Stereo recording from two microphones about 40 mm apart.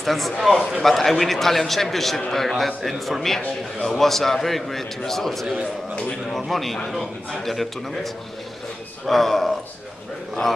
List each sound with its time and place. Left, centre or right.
0.0 s a man's voice: centre